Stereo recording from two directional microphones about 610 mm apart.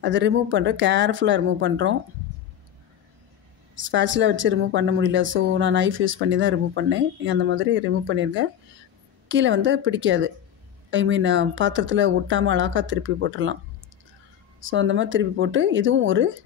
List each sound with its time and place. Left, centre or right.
0.0 s speech: centre
3.7 s speech: centre
14.6 s speech: centre